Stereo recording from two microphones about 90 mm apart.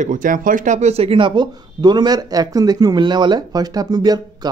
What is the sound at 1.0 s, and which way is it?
Speech, 80° right.